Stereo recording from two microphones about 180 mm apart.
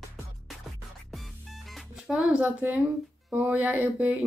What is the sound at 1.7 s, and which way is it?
Speech, 5° right (ahead or behind).